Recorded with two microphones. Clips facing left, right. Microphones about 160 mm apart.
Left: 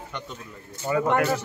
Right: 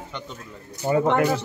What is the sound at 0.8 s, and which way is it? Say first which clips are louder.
Speech: right 3 dB; 30° right (ahead or behind).